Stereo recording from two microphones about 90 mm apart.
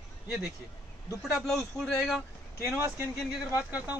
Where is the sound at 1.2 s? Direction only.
Centre (ahead or behind).